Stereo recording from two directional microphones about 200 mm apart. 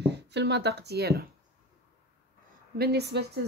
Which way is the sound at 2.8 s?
55° right (ahead or behind).